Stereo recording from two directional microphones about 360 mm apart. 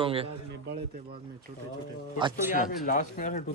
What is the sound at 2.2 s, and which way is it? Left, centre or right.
Speech, centre.